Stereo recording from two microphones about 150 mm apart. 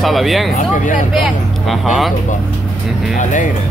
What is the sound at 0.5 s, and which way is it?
Speech, 55° left (ahead or behind).